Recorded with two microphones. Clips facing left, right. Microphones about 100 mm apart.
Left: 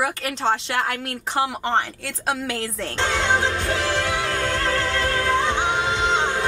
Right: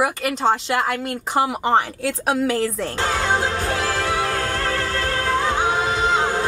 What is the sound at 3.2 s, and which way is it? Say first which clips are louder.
Music: even; 40° right (ahead or behind).